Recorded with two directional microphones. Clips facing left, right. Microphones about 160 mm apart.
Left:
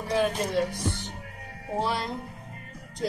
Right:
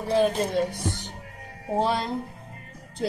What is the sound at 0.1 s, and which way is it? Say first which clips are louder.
Speech: right 3 dB; 30° right (ahead or behind).